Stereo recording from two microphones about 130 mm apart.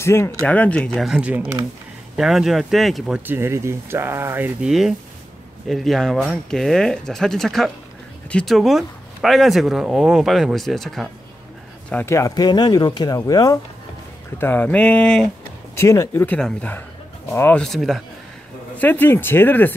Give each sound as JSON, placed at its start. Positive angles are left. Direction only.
{"t": 0.0, "sound": "speech", "side_deg": 20}
{"t": 0.9, "sound": "speech", "side_deg": -5}
{"t": 3.2, "sound": "speech", "side_deg": -15}
{"t": 4.6, "sound": "speech", "side_deg": -5}
{"t": 11.9, "sound": "speech", "side_deg": 10}
{"t": 12.2, "sound": "speech", "side_deg": 30}
{"t": 14.4, "sound": "speech", "side_deg": 15}
{"t": 15.7, "sound": "speech", "side_deg": 20}
{"t": 17.6, "sound": "speech", "side_deg": 0}
{"t": 18.8, "sound": "speech", "side_deg": 15}